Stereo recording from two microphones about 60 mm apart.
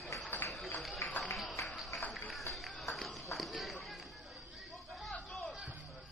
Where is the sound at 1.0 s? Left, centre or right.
Left.